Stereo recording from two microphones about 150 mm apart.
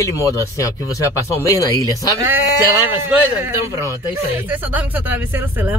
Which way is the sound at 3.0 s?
15° right (ahead or behind).